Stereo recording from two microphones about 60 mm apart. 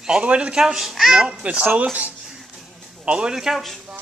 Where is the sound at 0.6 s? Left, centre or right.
Centre.